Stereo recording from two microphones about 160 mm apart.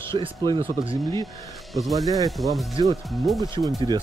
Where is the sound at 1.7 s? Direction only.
Centre (ahead or behind).